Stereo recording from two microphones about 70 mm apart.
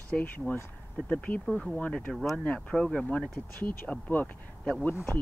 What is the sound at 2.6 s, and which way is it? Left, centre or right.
Speech, centre.